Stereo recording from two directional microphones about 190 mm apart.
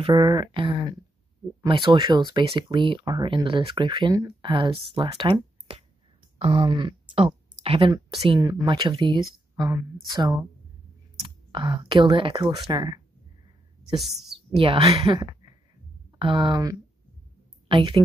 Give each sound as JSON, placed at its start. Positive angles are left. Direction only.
{"t": 0.0, "sound": "speech", "side_deg": -25}
{"t": 11.2, "sound": "speech", "side_deg": -25}
{"t": 13.9, "sound": "a woman's voice", "side_deg": 0}
{"t": 14.6, "sound": "a woman's voice", "side_deg": -30}